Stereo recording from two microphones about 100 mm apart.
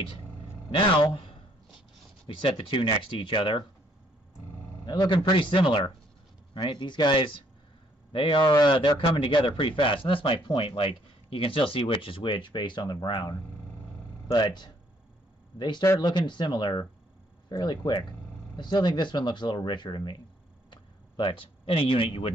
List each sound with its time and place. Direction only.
1.0 s a man's voice: 55° left (ahead or behind)
4.8 s speech: 45° left (ahead or behind)
5.3 s speech: 55° left (ahead or behind)